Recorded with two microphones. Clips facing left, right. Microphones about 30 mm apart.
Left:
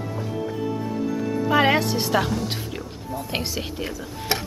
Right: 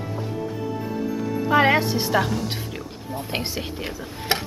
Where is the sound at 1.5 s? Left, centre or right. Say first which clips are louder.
Right 1 dB; centre.